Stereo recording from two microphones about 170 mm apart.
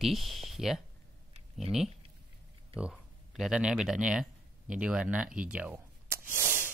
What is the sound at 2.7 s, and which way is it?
Speech, 5° right (ahead or behind).